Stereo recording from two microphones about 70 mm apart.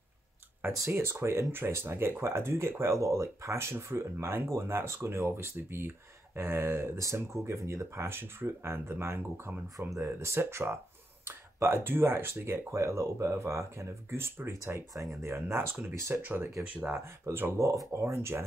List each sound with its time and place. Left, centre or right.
0.6 s speech: right
16.2 s speech: right
16.5 s speech: right